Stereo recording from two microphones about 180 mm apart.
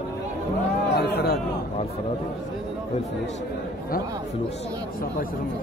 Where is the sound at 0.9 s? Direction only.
65° left (ahead or behind).